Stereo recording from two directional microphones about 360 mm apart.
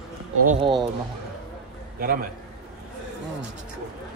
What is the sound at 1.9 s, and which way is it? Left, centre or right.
Speech, right.